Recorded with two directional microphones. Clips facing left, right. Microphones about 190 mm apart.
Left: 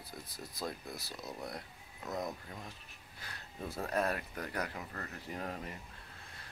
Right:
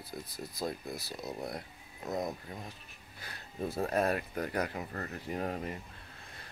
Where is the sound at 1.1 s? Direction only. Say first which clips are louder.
Right 4 dB; 25° right (ahead or behind).